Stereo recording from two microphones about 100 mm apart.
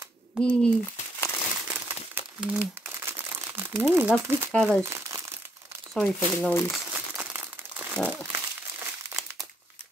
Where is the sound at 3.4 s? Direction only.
20° right (ahead or behind).